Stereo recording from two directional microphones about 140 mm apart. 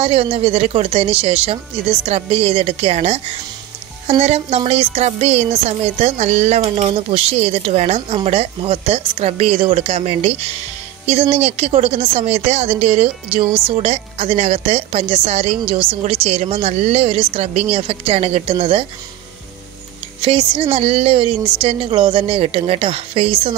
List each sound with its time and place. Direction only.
0.0 s a woman's voice: 45° right (ahead or behind)
20.2 s a woman's voice: 40° right (ahead or behind)